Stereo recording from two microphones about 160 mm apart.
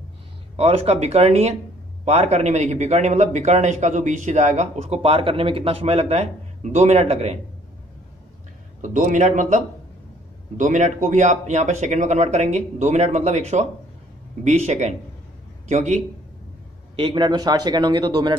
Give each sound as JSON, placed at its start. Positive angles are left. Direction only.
{"t": 0.6, "sound": "a man's voice", "side_deg": -40}
{"t": 8.8, "sound": "a man's voice", "side_deg": -50}
{"t": 10.6, "sound": "a man's voice", "side_deg": -50}
{"t": 16.9, "sound": "a man's voice", "side_deg": -30}